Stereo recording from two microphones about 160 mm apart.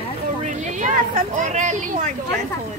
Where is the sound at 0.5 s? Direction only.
45° right (ahead or behind).